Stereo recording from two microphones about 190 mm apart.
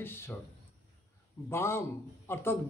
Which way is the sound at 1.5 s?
15° left (ahead or behind).